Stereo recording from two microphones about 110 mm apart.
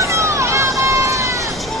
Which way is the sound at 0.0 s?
25° right (ahead or behind).